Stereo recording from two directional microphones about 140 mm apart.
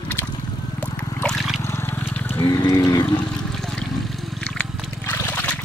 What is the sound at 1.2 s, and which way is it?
Trickle, centre (ahead or behind).